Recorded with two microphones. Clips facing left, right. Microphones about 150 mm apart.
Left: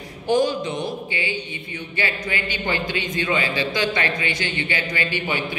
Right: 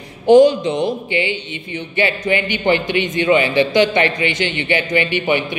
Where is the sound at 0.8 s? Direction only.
25° right (ahead or behind).